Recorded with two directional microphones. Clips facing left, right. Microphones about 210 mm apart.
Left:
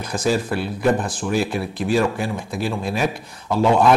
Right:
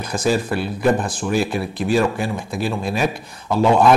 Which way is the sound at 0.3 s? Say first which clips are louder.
Right 1 dB; 15° right (ahead or behind).